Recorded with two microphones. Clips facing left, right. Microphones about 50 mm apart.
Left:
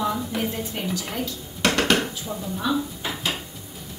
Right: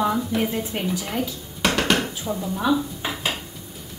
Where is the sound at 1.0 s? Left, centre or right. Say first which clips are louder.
Right 3 dB; centre.